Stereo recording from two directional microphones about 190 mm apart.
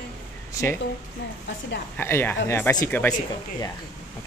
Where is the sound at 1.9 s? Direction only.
10° left (ahead or behind).